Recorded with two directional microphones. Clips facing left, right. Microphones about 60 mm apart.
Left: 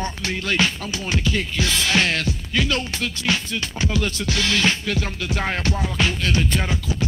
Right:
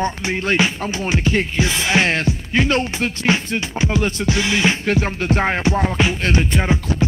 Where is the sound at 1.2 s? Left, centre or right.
Right.